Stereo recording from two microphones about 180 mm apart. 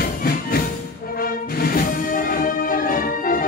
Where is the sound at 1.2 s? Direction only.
55° left (ahead or behind).